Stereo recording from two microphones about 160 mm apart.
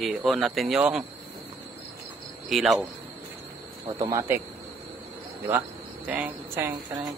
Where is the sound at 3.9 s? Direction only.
20° right (ahead or behind).